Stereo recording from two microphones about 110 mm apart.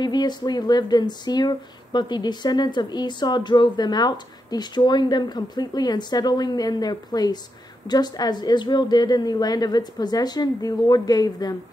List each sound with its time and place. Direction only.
0.0 s speech: 40° left (ahead or behind)